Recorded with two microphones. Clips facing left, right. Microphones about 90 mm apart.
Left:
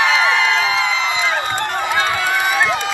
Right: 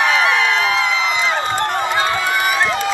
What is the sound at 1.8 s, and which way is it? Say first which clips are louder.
Run: even; 5° right (ahead or behind).